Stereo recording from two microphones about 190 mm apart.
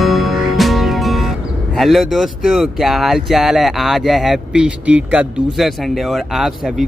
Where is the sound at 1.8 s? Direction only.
Centre (ahead or behind).